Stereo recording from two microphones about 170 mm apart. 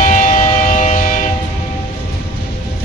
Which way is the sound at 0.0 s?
45° left (ahead or behind).